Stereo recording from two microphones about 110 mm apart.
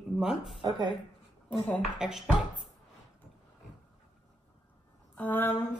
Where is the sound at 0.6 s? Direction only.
40° right (ahead or behind).